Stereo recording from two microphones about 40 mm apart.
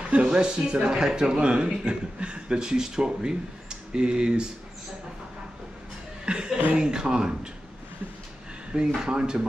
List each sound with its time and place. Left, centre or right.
0.1 s speech: right
6.2 s chuckle: right
6.7 s speech: right
8.7 s speech: centre